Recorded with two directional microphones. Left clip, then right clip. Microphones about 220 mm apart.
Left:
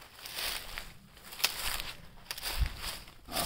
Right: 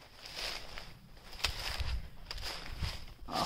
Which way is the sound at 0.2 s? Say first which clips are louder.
Left 3 dB; 55° left (ahead or behind).